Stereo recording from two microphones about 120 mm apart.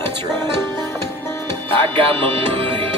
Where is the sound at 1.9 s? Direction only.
50° right (ahead or behind).